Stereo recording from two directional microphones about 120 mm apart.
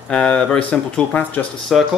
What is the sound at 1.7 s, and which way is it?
Speech, centre (ahead or behind).